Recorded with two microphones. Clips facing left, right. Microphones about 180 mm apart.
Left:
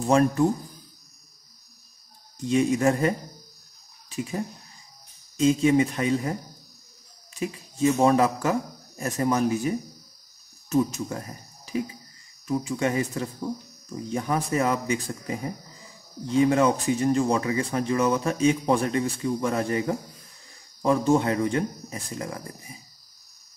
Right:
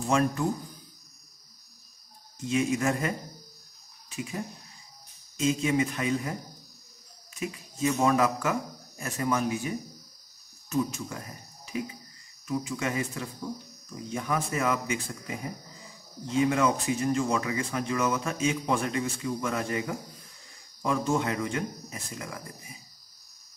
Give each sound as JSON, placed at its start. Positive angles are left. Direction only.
{"t": 0.1, "sound": "speech", "side_deg": 35}
{"t": 2.4, "sound": "speech", "side_deg": 35}
{"t": 5.4, "sound": "speech", "side_deg": 30}
{"t": 7.3, "sound": "speech", "side_deg": 30}
{"t": 10.7, "sound": "speech", "side_deg": 35}